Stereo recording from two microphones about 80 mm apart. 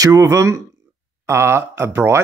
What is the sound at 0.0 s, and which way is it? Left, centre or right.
Speech, right.